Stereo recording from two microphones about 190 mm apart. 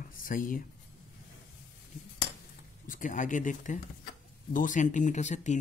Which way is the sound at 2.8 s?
40° left (ahead or behind).